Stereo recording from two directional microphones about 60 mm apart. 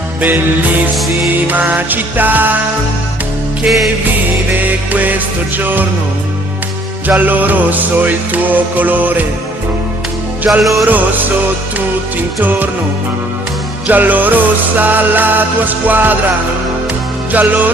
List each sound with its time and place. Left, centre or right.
0.2 s music: right
3.6 s music: centre
4.6 s music: right
7.1 s music: right
10.4 s music: centre
10.9 s music: right
12.4 s music: right
13.8 s music: right
17.3 s music: right